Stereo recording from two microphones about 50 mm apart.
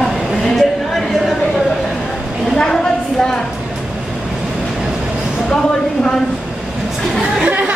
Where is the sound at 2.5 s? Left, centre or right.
Centre.